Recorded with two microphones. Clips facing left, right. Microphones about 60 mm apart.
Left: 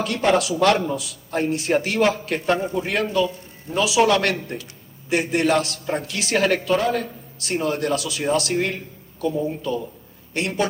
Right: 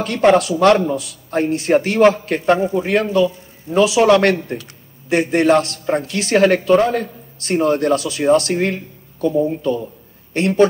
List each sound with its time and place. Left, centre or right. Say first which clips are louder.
0.0 s speech: right 6 dB; right